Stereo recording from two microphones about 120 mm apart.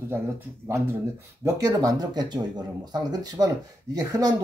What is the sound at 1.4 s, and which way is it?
Speech, 30° right (ahead or behind).